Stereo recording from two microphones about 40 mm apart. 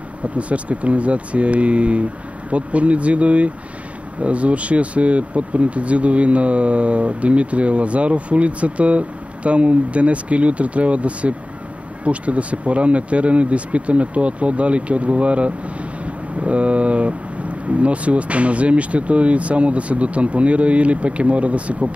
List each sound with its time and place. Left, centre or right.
0.4 s speech: right